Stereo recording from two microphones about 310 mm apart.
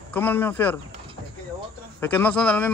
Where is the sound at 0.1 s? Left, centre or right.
Centre.